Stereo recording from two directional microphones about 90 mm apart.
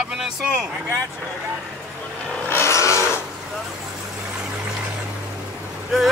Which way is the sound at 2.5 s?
30° left (ahead or behind).